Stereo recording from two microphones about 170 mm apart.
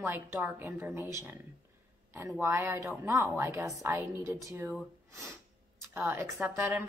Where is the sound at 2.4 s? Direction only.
15° right (ahead or behind).